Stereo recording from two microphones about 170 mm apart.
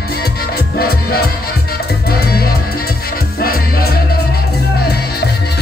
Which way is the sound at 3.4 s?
65° left (ahead or behind).